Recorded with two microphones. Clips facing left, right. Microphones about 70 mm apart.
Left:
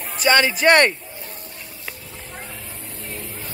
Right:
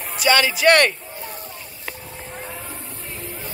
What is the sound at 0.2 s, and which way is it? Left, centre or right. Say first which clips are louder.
Speech: left 1 dB; left.